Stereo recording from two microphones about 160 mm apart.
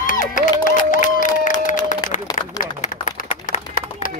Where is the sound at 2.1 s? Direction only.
50° left (ahead or behind).